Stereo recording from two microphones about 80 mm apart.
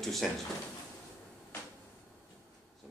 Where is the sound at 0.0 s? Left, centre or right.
Centre.